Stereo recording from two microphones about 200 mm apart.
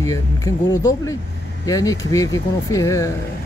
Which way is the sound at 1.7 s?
15° left (ahead or behind).